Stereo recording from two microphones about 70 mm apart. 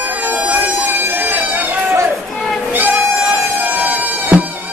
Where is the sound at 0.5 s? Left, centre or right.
Right.